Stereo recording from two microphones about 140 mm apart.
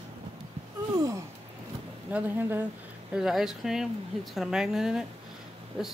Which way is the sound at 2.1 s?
10° right (ahead or behind).